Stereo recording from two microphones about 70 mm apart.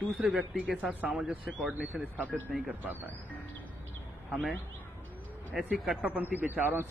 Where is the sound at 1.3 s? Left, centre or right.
Right.